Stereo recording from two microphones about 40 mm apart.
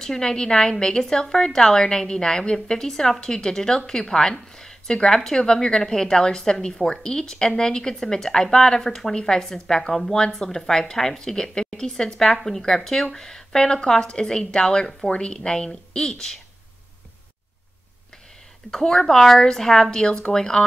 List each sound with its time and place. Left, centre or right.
0.0 s a woman's voice: centre
18.7 s a woman's voice: centre